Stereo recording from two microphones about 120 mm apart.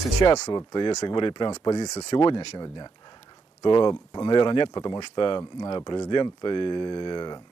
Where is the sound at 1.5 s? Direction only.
30° left (ahead or behind).